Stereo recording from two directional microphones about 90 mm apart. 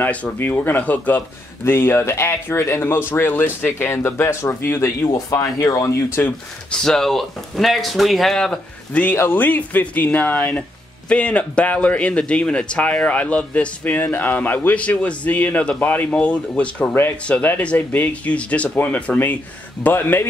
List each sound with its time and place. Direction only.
0.0 s speech: 20° left (ahead or behind); by 6.0 s 35° left (ahead or behind)
6.7 s a man's voice: 5° left (ahead or behind); by 20.2 s 25° left (ahead or behind)